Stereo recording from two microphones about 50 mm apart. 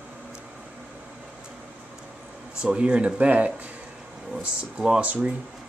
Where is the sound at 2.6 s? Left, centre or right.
Right.